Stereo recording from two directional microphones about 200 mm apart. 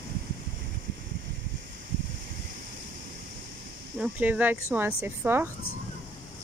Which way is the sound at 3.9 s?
5° right (ahead or behind).